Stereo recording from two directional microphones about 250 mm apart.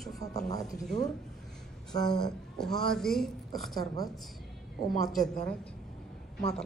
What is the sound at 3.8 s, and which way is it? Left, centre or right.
Speech, centre.